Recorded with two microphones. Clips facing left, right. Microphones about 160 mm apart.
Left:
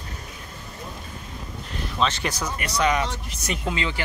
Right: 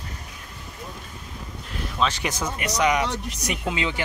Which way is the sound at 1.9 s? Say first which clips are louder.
Even; 10° right (ahead or behind).